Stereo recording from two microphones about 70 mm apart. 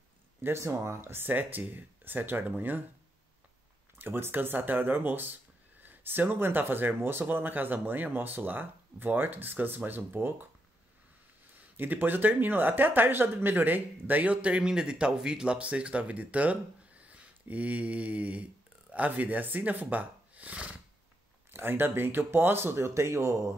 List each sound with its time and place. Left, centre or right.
0.4 s speech: right
4.0 s speech: right
11.7 s speech: right
21.5 s speech: right